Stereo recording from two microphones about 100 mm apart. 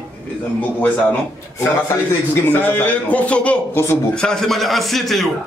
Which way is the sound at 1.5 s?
30° left (ahead or behind).